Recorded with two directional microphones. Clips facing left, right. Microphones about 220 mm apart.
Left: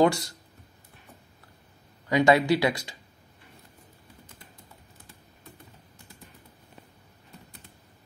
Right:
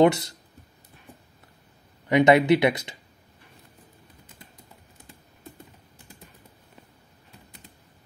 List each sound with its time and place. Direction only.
0.0 s speech: 20° right (ahead or behind)
2.0 s speech: 20° right (ahead or behind)